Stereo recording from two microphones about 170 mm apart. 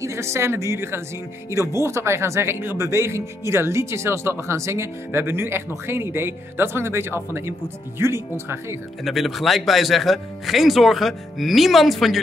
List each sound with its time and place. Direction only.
0.0 s speech: 15° right (ahead or behind)
9.0 s speech: centre (ahead or behind)